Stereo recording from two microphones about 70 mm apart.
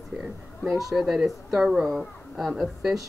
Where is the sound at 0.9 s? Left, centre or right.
Centre.